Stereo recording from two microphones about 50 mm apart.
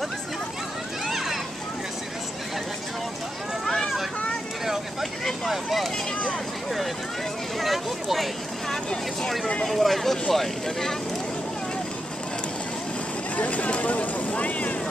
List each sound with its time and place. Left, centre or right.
1.0 s a sound: centre
3.6 s vehicle: centre
5.5 s speech: centre
7.5 s speech: centre
13.4 s speech: left